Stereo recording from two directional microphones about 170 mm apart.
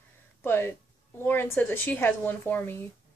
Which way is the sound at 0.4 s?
10° left (ahead or behind).